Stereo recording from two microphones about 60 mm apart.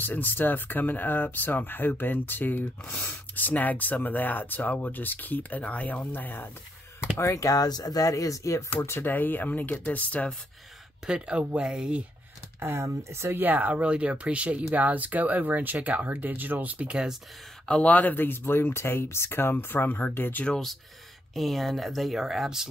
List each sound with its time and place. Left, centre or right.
0.0 s speech: left
7.2 s speech: left
7.4 s speech: left
8.8 s speech: left
9.1 s speech: left
11.1 s speech: centre
12.5 s speech: right
13.4 s speech: right
16.9 s speech: centre
17.6 s speech: left
21.4 s speech: centre